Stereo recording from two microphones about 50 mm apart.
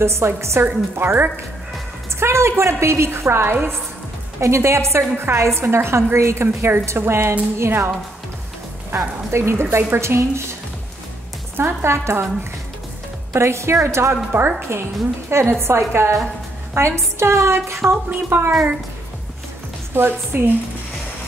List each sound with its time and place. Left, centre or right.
0.0 s a woman's voice: right
0.6 s a woman's voice: right
2.1 s a woman's voice: right
4.4 s a woman's voice: right
8.9 s a woman's voice: right
11.5 s a woman's voice: right
13.3 s a woman's voice: right
14.3 s a woman's voice: right
14.7 s a woman's voice: right
17.8 s a woman's voice: right
19.9 s a woman's voice: right